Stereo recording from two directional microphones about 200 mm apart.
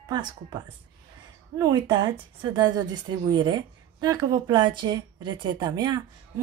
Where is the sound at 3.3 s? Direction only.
20° right (ahead or behind).